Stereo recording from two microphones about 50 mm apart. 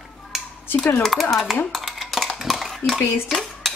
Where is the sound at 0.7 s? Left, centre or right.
Left.